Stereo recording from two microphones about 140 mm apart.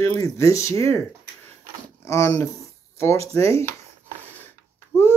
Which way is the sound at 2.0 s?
20° left (ahead or behind).